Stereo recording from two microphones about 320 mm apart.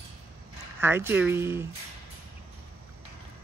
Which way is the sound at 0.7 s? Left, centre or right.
Centre.